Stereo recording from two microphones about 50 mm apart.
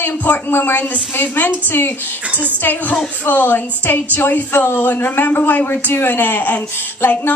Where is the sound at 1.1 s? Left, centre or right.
Left.